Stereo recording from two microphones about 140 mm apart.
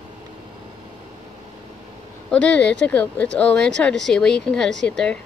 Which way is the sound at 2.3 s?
10° left (ahead or behind).